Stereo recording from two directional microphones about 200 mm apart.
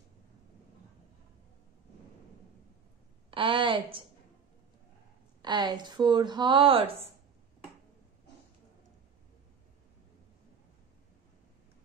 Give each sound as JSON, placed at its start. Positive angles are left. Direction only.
{"t": 3.3, "sound": "a woman's voice", "side_deg": -25}
{"t": 5.4, "sound": "a woman's voice", "side_deg": -20}